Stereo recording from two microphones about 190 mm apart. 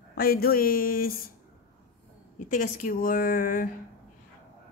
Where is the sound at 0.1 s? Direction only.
55° left (ahead or behind).